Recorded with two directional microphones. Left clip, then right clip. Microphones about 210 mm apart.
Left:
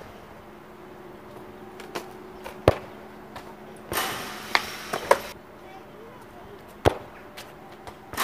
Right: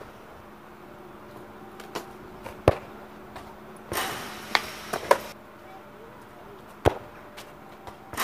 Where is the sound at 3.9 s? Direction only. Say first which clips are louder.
Left 2 dB; centre (ahead or behind).